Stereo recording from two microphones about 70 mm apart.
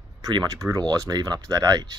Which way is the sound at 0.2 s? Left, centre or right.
Right.